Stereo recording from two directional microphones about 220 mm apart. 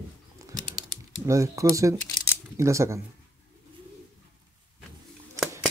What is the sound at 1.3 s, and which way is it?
Speech, 15° right (ahead or behind).